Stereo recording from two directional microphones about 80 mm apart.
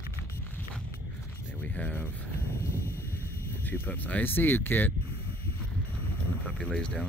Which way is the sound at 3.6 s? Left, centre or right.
Left.